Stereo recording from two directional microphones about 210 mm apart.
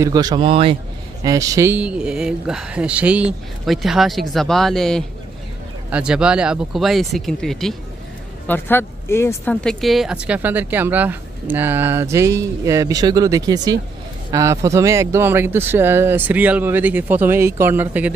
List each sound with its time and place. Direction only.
0.0 s a man's voice: 20° right (ahead or behind)